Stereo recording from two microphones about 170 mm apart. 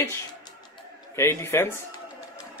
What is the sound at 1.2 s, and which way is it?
Speech, 15° left (ahead or behind).